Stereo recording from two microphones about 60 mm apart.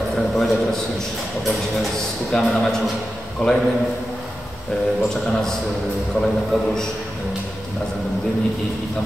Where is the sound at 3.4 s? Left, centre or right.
Centre.